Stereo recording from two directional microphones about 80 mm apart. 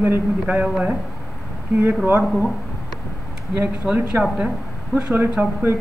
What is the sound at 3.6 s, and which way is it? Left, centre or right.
Speech, right.